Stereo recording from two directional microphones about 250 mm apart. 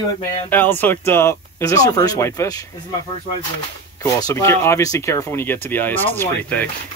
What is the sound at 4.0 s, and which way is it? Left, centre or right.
Speech, centre.